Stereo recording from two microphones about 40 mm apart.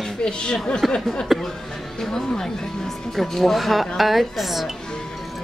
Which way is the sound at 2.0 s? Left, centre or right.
Centre.